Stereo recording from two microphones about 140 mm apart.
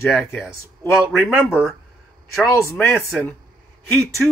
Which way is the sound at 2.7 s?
10° left (ahead or behind).